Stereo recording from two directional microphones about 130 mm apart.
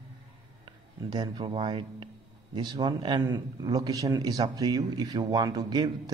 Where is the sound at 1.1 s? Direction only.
40° right (ahead or behind).